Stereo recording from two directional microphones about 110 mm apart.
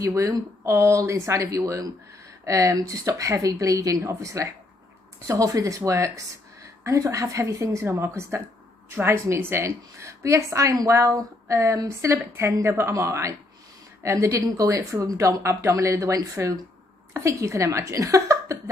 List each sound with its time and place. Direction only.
0.0 s a woman's voice: 30° right (ahead or behind)